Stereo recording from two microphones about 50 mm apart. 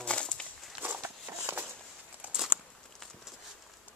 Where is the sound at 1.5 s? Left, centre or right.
Right.